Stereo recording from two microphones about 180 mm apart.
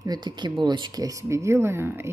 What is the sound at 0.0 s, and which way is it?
Speech, 25° right (ahead or behind).